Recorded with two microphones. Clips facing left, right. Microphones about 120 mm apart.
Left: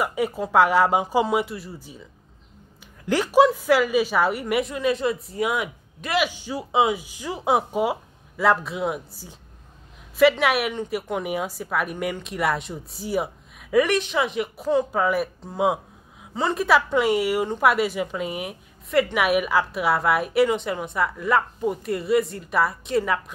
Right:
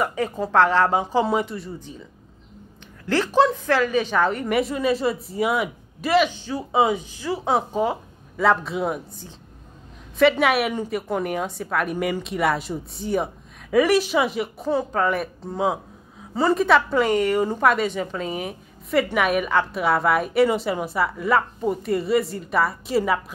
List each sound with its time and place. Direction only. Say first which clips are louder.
0.0 s a woman's voice: even; 10° left (ahead or behind)
3.1 s a woman's voice: left 1 dB; 10° left (ahead or behind)
6.7 s a woman's voice: right 1 dB; centre (ahead or behind)
7.1 s a woman's voice: even; 15° left (ahead or behind)
10.4 s a woman's voice: right 2 dB; centre (ahead or behind)
15.5 s a sound: left 1 dB; 20° left (ahead or behind)
16.3 s a woman's voice: right 2 dB; centre (ahead or behind)